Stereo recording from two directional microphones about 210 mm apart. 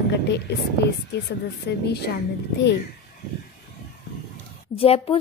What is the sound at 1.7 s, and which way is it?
Speech, 55° left (ahead or behind).